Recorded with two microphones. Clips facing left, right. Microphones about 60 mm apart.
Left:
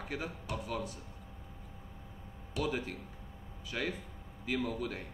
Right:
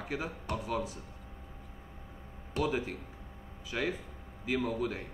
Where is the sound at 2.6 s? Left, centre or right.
Centre.